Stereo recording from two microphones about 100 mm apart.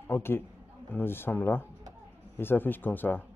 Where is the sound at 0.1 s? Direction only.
25° left (ahead or behind).